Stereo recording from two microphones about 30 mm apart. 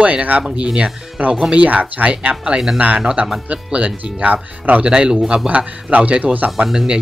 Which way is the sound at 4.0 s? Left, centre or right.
Right.